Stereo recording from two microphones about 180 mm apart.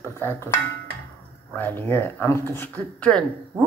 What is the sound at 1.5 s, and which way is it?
Speech, 10° left (ahead or behind).